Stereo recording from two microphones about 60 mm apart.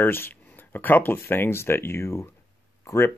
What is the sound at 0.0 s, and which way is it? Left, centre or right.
Speech, left.